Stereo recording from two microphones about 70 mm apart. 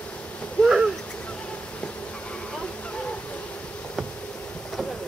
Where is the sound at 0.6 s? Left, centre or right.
Centre.